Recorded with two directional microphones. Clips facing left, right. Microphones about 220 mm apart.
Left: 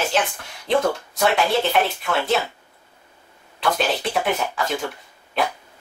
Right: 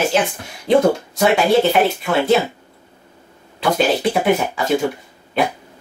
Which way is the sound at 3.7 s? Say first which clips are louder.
Right 8 dB; 25° right (ahead or behind).